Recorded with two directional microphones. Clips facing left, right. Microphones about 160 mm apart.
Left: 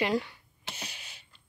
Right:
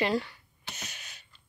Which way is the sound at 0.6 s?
30° left (ahead or behind).